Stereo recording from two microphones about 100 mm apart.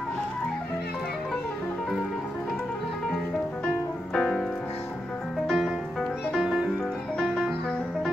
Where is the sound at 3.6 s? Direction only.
10° left (ahead or behind).